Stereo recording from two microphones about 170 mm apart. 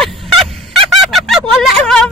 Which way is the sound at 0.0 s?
Centre (ahead or behind).